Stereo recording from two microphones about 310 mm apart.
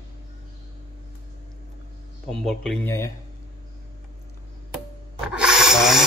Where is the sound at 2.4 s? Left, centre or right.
Centre.